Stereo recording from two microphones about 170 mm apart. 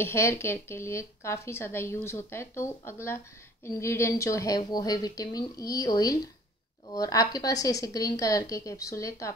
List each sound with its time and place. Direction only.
0.0 s a woman's voice: 15° left (ahead or behind)